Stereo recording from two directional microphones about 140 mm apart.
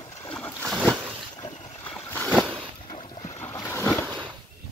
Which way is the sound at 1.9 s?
10° left (ahead or behind).